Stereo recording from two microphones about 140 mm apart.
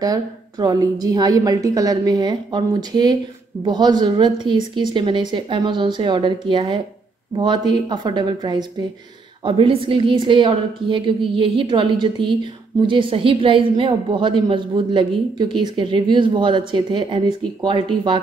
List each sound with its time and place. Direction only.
0.0 s a woman's voice: 25° right (ahead or behind)